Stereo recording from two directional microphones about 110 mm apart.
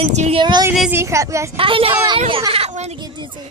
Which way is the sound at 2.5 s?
65° right (ahead or behind).